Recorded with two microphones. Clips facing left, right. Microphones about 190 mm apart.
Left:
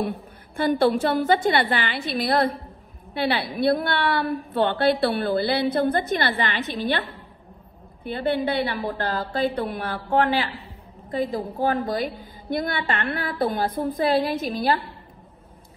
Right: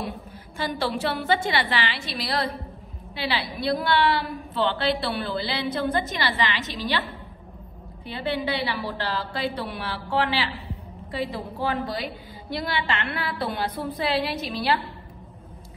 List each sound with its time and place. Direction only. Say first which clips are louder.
0.6 s a woman's voice: left 7 dB; 55° left (ahead or behind)